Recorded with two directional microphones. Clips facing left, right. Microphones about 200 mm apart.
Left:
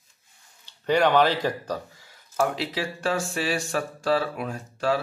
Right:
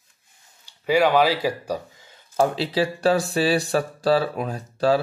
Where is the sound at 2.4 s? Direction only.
30° right (ahead or behind).